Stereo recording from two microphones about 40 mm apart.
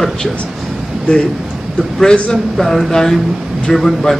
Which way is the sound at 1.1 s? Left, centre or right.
Left.